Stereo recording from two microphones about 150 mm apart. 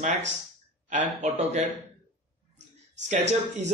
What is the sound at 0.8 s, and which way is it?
Speech, 50° right (ahead or behind).